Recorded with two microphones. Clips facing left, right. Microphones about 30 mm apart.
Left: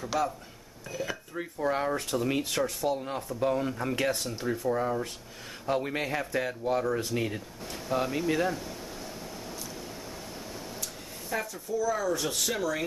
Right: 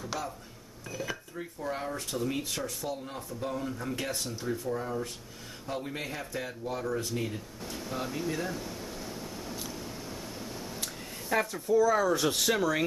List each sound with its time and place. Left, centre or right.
0.0 s cash register: centre
1.0 s speech: centre
1.3 s speech: left
8.3 s speech: left
8.5 s a sound: centre
11.2 s speech: centre